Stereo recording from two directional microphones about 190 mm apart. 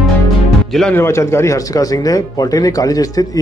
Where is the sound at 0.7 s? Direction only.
5° left (ahead or behind).